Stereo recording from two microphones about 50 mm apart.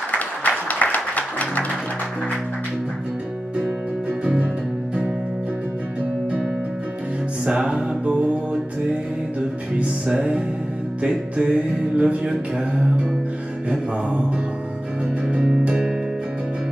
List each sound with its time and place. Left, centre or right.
0.1 s music: left
7.4 s music: centre
9.8 s music: centre